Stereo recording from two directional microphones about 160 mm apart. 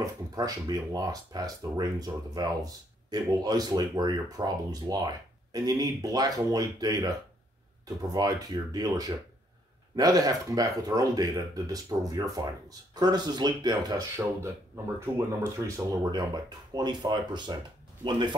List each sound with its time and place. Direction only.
0.0 s speech: 25° right (ahead or behind)